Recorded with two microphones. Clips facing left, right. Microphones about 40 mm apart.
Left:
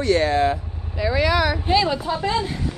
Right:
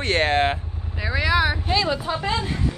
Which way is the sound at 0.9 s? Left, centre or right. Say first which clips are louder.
Left 2 dB; centre.